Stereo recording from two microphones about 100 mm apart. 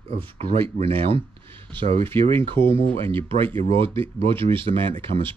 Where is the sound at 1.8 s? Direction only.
80° right.